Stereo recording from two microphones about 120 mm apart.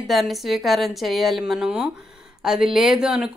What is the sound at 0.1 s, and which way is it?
Speech, centre (ahead or behind).